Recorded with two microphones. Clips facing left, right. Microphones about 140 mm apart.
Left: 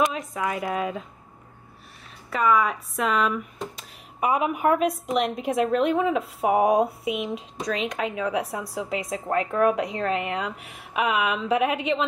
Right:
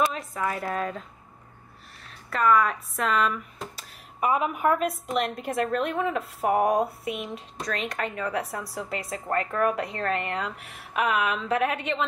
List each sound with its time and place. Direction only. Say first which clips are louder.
0.1 s speech: left 2 dB; centre (ahead or behind)
2.2 s speech: even; centre (ahead or behind)